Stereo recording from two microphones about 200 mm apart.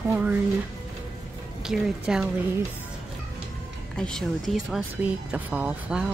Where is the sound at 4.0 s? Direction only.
Centre (ahead or behind).